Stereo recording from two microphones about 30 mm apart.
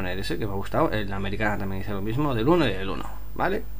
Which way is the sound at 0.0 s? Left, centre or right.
Centre.